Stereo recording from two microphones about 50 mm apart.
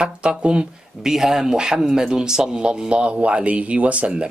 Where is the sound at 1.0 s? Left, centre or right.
Centre.